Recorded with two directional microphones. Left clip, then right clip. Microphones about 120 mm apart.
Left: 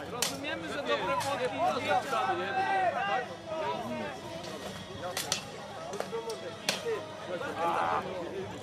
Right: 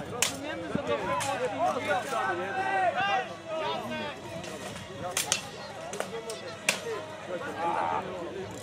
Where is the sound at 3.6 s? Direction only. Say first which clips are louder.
Right 1 dB; 30° right (ahead or behind).